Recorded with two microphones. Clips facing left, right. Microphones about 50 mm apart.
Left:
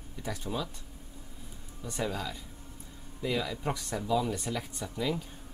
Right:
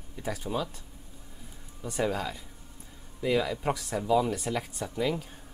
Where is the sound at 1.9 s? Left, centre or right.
Centre.